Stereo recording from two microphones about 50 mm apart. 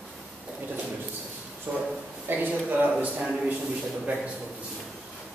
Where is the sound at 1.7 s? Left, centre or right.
Right.